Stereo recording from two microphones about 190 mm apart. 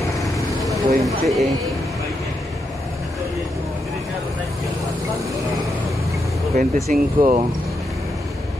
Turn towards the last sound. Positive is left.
turn(degrees=-35)  # may be behind; listen again after turning